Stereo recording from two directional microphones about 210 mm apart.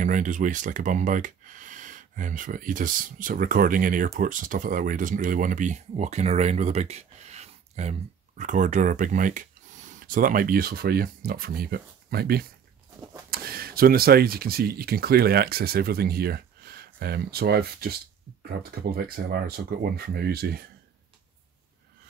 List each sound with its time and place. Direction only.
0.0 s speech: 35° right (ahead or behind)